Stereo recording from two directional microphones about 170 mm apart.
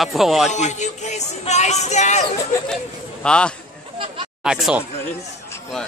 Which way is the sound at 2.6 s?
5° left (ahead or behind).